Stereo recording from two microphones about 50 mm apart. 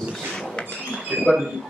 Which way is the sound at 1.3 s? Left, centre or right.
Centre.